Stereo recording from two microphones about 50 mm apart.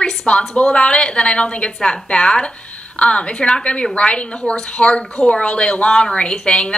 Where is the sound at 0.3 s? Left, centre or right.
Left.